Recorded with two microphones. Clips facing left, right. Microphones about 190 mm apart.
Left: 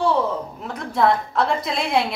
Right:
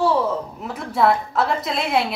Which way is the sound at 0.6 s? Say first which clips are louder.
Right 1 dB; 5° right (ahead or behind).